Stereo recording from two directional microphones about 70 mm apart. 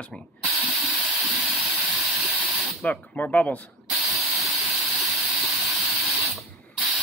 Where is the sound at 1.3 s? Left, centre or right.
Centre.